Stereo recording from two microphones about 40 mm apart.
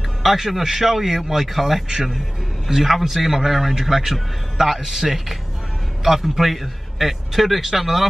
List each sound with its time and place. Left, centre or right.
0.2 s a man's voice: centre